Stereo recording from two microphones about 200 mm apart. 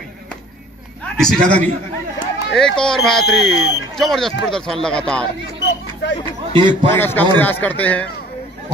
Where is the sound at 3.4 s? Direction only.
60° left (ahead or behind).